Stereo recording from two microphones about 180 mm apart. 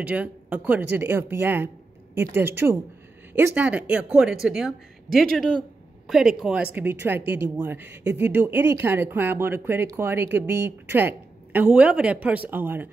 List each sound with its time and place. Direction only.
0.0 s a woman's voice: 10° right (ahead or behind)